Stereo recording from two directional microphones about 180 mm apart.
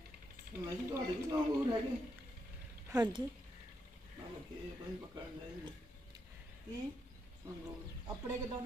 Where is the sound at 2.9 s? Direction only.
20° right (ahead or behind).